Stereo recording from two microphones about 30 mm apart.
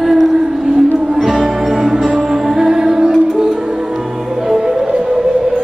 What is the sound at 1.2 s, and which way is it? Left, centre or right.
Music, centre.